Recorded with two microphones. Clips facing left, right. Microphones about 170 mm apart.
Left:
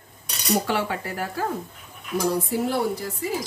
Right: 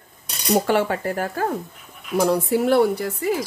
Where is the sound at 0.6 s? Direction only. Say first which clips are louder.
Right 6 dB; 50° right (ahead or behind).